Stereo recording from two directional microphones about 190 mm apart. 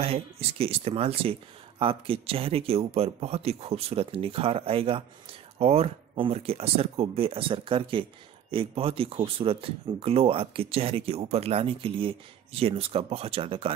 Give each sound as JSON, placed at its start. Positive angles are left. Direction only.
{"t": 0.0, "sound": "speech", "side_deg": -30}